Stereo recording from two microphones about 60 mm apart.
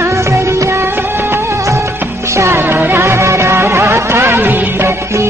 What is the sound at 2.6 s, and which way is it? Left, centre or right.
Music, right.